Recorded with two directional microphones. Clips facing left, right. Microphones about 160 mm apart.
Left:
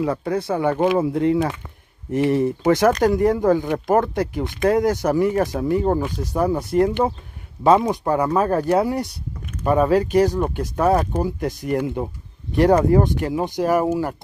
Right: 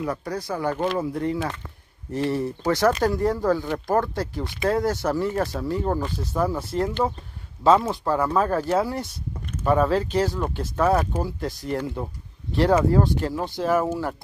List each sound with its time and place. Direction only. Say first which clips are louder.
0.0 s speech: left 6 dB; 25° left (ahead or behind); by 14.1 s 10° left (ahead or behind)